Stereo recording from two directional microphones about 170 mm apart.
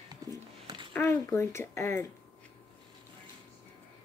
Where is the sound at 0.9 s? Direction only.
15° left (ahead or behind).